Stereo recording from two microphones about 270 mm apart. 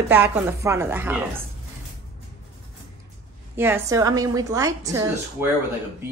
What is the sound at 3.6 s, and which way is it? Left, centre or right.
A woman's voice, centre.